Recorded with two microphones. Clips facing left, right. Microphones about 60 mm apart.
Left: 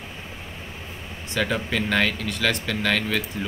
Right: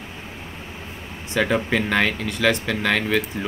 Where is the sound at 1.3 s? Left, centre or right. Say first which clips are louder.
Right 4 dB; right.